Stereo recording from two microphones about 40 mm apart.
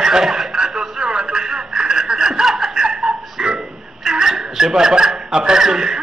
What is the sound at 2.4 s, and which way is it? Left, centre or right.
Snicker, centre.